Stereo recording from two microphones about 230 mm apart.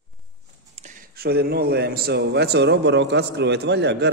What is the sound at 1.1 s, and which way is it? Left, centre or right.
A man's voice, right.